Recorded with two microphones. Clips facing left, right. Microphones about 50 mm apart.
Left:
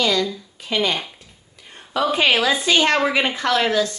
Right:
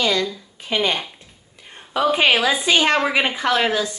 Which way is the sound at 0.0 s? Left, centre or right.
Right.